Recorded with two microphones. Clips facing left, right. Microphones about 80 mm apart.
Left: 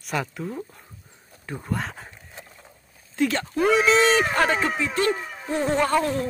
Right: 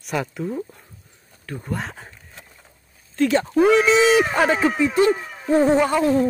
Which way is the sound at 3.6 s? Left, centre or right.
Centre.